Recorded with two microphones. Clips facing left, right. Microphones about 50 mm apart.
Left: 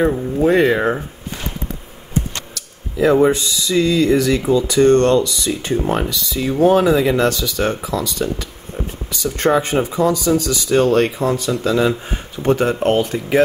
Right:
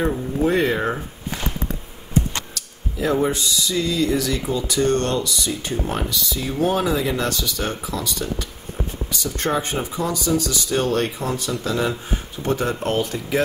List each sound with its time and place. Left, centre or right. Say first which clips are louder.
0.0 s speech: left 5 dB; left
3.0 s speech: left 7 dB; left
3.6 s a sound: left 9 dB; left
4.0 s speech: left 6 dB; left
11.1 s speech: left 7 dB; left
11.6 s speech: left 7 dB; left
12.1 s speech: left 6 dB; left
12.8 s speech: left 8 dB; left